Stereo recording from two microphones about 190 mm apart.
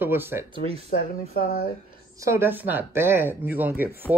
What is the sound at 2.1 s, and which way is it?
Speech, 15° right (ahead or behind).